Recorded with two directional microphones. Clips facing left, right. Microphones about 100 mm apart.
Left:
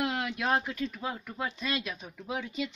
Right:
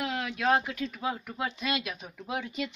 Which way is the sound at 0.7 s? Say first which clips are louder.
Right 2 dB; 5° right (ahead or behind).